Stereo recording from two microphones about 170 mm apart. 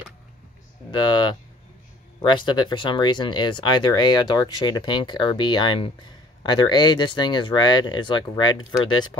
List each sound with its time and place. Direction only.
0.9 s speech: 25° left (ahead or behind)